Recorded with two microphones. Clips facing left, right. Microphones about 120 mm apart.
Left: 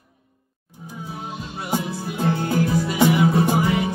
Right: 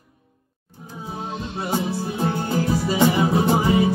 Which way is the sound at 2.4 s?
25° right (ahead or behind).